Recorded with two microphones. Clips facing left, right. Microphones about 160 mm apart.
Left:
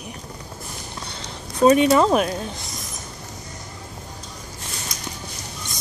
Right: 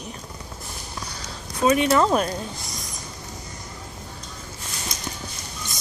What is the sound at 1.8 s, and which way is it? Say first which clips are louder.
Speech: left 3 dB; 20° left (ahead or behind).